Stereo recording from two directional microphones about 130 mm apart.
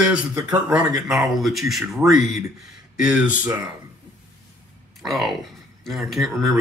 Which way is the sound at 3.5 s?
30° right (ahead or behind).